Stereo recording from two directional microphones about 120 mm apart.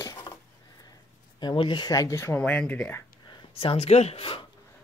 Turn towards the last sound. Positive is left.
turn(degrees=50)  # may be behind; listen again after turning